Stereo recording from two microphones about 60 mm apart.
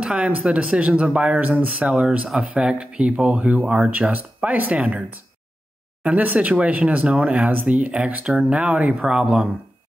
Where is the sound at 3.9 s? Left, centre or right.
Right; by 9.4 s centre.